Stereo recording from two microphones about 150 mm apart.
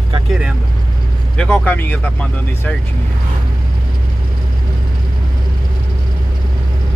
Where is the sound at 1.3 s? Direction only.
10° left (ahead or behind).